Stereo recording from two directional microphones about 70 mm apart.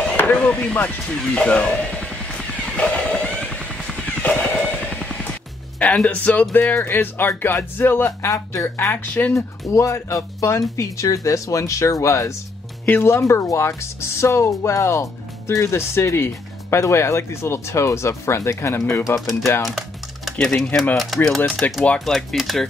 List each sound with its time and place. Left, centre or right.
0.2 s a sound: left
0.5 s speech: centre
1.1 s music: centre
5.8 s speech: centre
9.3 s speech: left
12.8 s speech: left
20.4 s speech: centre
21.6 s speech: left
21.9 s speech: centre